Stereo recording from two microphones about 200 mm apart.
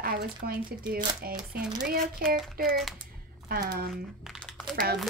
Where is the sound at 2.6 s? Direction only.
50° right (ahead or behind).